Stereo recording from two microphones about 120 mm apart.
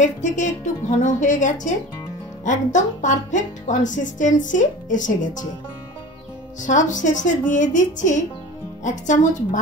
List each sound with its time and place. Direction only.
0.0 s speech: 90° left
6.6 s speech: 90° left